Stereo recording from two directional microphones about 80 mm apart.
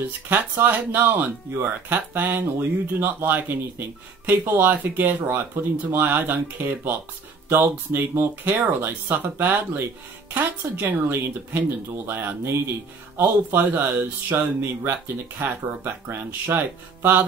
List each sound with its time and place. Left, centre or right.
0.3 s speech: right